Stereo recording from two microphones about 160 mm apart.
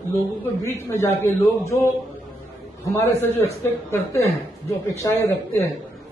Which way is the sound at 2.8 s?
15° left (ahead or behind).